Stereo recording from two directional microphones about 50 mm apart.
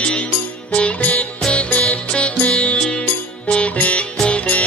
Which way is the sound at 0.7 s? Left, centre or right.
Left.